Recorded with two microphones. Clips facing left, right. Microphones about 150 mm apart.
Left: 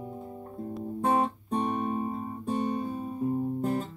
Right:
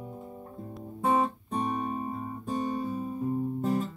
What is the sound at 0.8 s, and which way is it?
Guitar, centre (ahead or behind).